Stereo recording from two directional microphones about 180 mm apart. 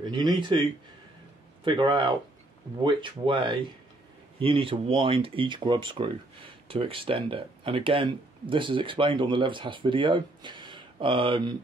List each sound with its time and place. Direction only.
0.0 s speech: 25° right (ahead or behind)
1.6 s speech: 25° right (ahead or behind)